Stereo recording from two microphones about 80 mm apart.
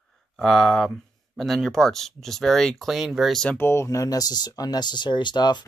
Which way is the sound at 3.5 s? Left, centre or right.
Left.